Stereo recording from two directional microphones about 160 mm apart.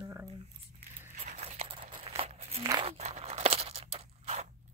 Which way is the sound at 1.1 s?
45° right (ahead or behind).